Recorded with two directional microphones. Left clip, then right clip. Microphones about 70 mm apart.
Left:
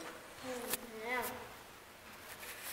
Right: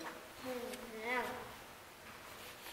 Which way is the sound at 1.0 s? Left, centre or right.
Centre.